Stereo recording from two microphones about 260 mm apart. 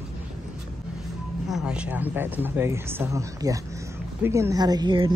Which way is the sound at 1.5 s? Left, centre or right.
Centre.